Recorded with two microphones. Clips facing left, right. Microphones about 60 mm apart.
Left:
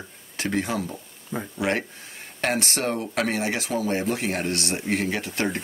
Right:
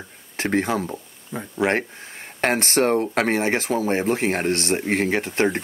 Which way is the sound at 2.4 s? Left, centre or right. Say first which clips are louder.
Right 5 dB; right.